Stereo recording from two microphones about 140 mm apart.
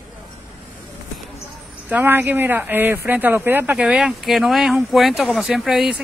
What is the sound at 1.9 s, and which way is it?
Speech, 15° right (ahead or behind).